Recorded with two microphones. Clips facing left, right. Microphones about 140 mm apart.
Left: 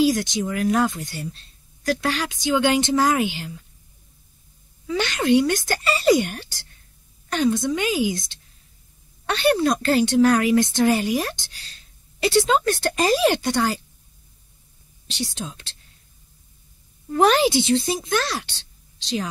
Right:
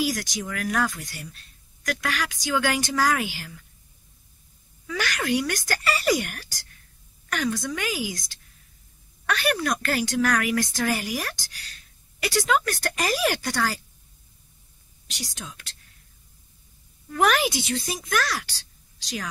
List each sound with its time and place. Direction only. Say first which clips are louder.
0.0 s a woman's voice: left 8 dB; 25° left (ahead or behind)
4.8 s a woman's voice: left 6 dB; 25° left (ahead or behind)
15.0 s a woman's voice: left 8 dB; 30° left (ahead or behind)
17.1 s a woman's voice: left 5 dB; 30° left (ahead or behind)